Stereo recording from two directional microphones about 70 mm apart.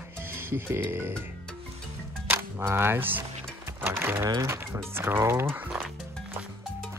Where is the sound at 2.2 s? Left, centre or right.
Right.